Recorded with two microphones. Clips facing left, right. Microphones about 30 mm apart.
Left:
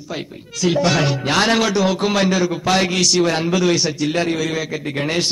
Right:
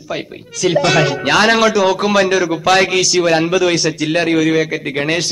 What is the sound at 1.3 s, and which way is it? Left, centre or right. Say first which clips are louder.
Speech: right 5 dB; right.